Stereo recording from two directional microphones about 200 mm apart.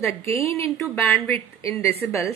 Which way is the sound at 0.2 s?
30° right (ahead or behind).